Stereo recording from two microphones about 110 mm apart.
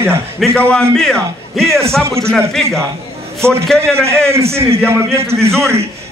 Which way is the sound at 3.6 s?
5° left (ahead or behind).